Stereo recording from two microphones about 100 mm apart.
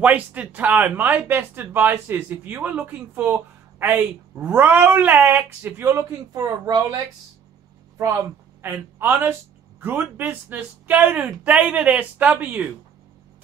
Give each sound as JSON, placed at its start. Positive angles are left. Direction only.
{"t": 0.0, "sound": "speech", "side_deg": -15}
{"t": 8.6, "sound": "speech", "side_deg": -25}